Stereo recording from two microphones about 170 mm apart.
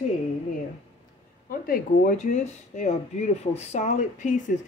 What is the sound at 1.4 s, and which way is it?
Speech, 55° left (ahead or behind).